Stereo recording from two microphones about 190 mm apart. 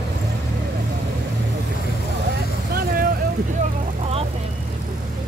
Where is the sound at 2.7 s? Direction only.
50° right (ahead or behind).